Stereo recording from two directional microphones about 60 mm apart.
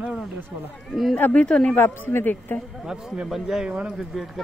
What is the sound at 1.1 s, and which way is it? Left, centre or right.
Speech, left.